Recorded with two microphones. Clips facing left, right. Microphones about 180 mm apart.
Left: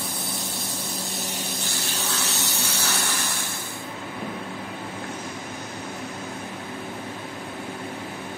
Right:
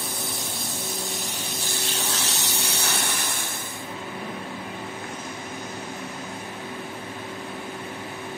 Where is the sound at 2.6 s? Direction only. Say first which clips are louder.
Right 1 dB; 60° right (ahead or behind).